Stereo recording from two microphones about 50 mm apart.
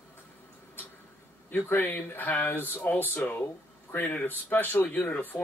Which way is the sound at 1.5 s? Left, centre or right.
Left.